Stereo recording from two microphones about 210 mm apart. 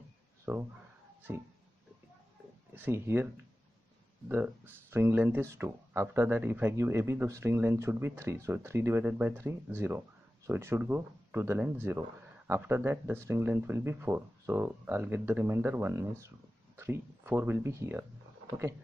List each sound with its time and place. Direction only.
0.5 s speech: 10° right (ahead or behind)
2.7 s speech: 10° right (ahead or behind)
4.3 s speech: 10° right (ahead or behind)